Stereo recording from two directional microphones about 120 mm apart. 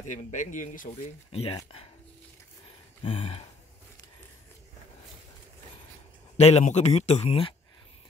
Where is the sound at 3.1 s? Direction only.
55° left (ahead or behind).